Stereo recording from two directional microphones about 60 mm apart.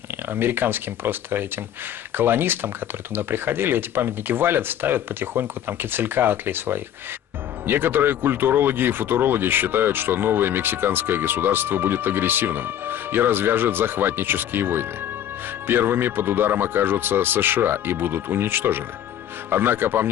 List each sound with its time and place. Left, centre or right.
0.3 s speech: right